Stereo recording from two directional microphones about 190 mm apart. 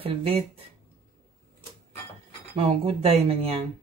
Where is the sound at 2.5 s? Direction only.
30° right (ahead or behind).